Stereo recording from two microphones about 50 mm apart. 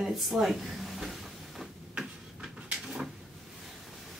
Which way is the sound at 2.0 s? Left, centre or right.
Centre.